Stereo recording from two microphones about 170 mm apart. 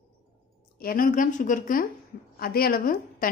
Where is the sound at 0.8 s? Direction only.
55° left (ahead or behind).